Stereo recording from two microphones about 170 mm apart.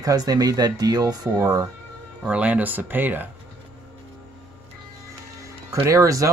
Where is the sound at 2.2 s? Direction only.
5° right (ahead or behind).